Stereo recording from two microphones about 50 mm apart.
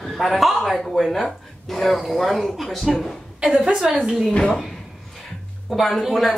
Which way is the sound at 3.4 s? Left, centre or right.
Right.